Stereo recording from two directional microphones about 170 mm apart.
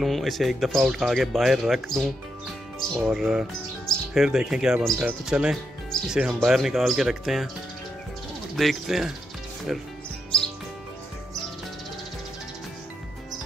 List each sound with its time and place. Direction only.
0.0 s speech: centre (ahead or behind)
8.5 s speech: centre (ahead or behind)